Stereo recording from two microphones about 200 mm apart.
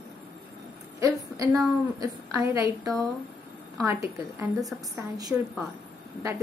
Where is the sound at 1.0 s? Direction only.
15° right (ahead or behind).